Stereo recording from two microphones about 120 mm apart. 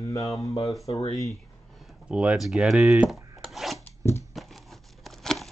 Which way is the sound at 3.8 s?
25° left (ahead or behind).